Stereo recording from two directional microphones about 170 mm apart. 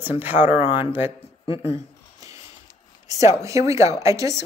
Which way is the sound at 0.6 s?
30° left (ahead or behind).